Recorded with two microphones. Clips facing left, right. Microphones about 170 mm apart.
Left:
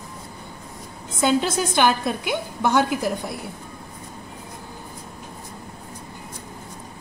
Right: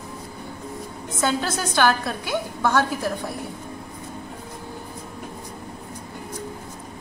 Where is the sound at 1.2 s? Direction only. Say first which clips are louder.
Left 4 dB; 15° left (ahead or behind).